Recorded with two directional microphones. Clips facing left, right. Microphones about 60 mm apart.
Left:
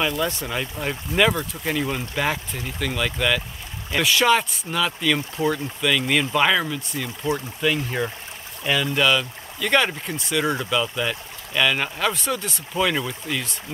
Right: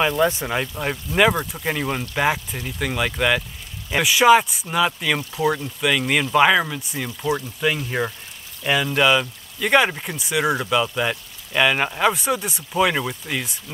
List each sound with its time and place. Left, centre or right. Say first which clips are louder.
0.0 s speech: right 5 dB; right